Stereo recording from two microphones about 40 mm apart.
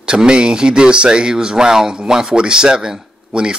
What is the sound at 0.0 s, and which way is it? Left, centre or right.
A man's voice, centre.